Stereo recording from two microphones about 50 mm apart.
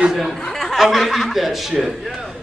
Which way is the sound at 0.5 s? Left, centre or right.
Centre.